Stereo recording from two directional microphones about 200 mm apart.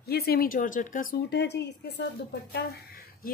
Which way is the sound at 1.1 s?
55° left (ahead or behind).